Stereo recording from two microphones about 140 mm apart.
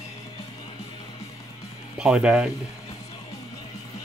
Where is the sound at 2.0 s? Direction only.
5° right (ahead or behind).